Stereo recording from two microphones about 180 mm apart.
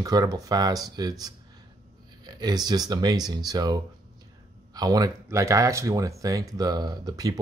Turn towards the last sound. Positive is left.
turn(degrees=-20)  # may be behind; listen again after turning